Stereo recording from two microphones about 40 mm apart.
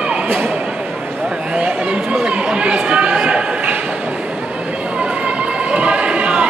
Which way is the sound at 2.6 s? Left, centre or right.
Right.